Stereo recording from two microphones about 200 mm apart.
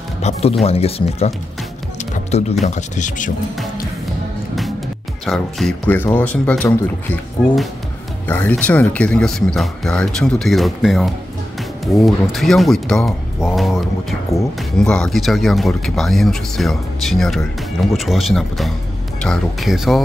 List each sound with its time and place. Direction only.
0.2 s speech: 30° left (ahead or behind)
2.6 s speech: 35° left (ahead or behind)
5.2 s speech: centre (ahead or behind)
8.3 s speech: 10° left (ahead or behind)